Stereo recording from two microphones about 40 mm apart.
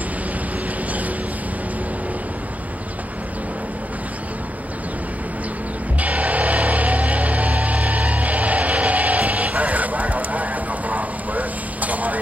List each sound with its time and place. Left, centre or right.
5.9 s music: right